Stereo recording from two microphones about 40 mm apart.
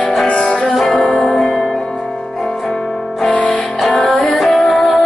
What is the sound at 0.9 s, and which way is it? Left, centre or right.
Music, left.